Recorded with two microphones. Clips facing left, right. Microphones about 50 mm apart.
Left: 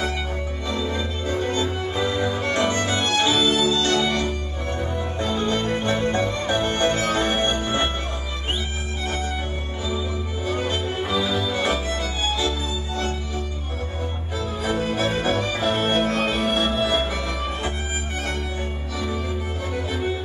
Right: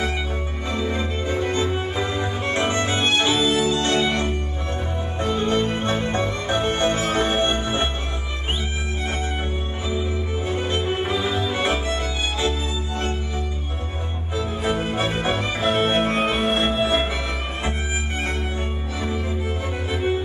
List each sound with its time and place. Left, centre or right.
0.7 s music: right
9.8 s music: right
14.6 s music: right
18.9 s music: right